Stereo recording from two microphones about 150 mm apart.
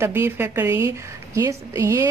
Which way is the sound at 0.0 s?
15° right (ahead or behind).